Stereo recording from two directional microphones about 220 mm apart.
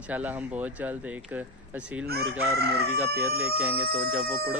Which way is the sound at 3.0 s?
10° right (ahead or behind).